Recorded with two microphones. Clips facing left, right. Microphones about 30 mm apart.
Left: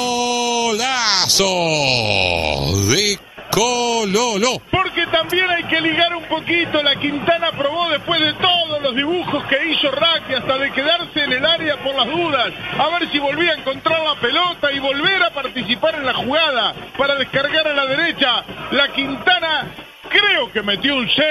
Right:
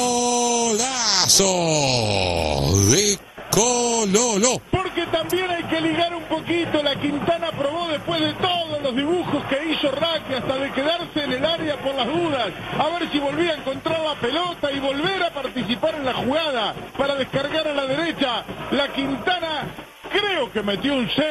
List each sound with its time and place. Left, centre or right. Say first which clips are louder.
0.2 s a sound: left 2 dB; centre
1.6 s speech: left 3 dB; centre
3.6 s speech: left 4 dB; centre